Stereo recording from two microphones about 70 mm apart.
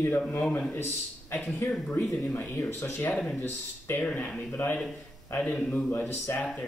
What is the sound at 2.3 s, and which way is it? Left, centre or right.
Speech, left.